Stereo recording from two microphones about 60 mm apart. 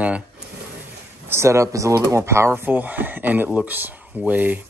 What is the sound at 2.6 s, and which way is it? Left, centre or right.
Speech, right.